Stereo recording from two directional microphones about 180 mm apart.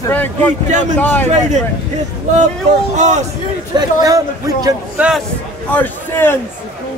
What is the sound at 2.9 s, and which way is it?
Speech, 40° right (ahead or behind).